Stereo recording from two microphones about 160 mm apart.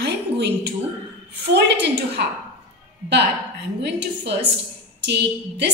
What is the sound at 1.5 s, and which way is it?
Speech, 90° right.